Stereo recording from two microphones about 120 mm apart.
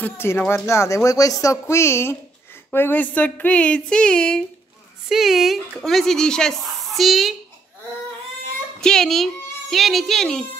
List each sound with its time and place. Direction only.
0.0 s speech: 20° left (ahead or behind)
2.7 s a sound: 15° left (ahead or behind)
5.1 s speech: centre (ahead or behind)
8.8 s a child's voice: 5° left (ahead or behind)